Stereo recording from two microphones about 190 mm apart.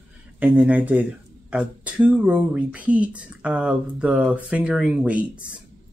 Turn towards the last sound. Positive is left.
turn(degrees=-5)  # may be behind; listen again after turning